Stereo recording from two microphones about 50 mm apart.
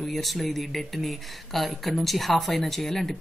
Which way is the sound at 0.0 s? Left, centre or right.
Centre.